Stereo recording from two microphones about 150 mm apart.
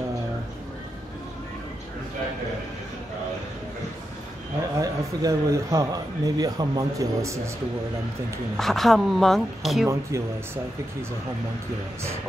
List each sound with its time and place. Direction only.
4.7 s speech: 20° right (ahead or behind)
8.5 s a woman's voice: centre (ahead or behind)
9.8 s speech: 15° right (ahead or behind)